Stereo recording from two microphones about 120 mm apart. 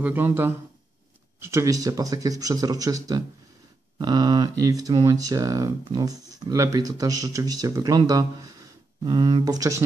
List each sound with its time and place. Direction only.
0.0 s speech: 15° right (ahead or behind)